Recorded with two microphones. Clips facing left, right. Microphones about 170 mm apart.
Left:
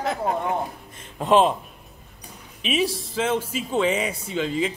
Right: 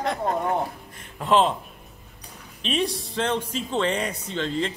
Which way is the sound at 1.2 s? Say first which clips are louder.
Left 2 dB; 15° left (ahead or behind).